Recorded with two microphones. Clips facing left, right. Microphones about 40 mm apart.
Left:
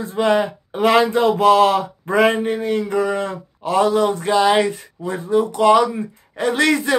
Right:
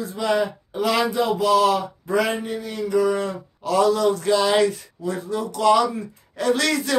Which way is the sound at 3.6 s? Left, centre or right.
Left.